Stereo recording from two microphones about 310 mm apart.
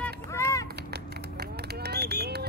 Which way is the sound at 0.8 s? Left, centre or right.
Right.